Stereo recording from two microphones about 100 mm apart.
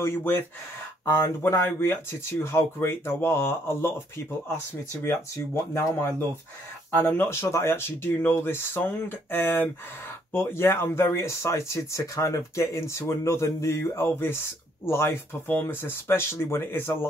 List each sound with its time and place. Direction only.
0.0 s speech: 25° left (ahead or behind)
5.0 s speech: 25° left (ahead or behind)